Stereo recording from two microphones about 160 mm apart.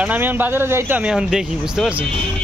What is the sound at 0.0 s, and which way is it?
Speech, 10° right (ahead or behind).